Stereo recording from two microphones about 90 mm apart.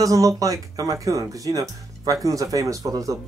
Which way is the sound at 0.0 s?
40° right (ahead or behind).